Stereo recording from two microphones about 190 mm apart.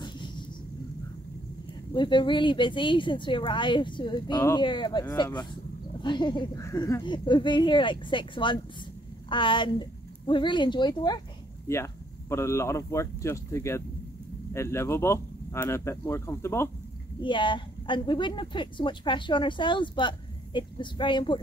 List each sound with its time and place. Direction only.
2.0 s a woman's voice: 25° left (ahead or behind)
17.2 s a woman's voice: 25° left (ahead or behind)